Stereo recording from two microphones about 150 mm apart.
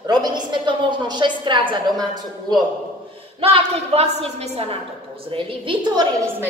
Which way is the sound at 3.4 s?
40° right (ahead or behind).